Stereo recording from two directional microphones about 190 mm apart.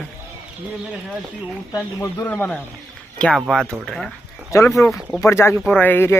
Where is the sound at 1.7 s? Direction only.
15° left (ahead or behind).